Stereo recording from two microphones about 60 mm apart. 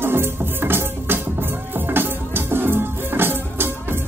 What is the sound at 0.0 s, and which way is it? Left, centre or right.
Music, right.